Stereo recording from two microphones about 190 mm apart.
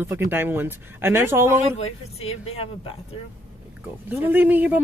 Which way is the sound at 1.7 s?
30° left (ahead or behind).